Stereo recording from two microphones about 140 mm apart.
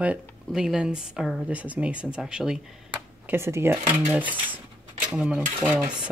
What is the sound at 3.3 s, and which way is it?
Speech, 20° right (ahead or behind).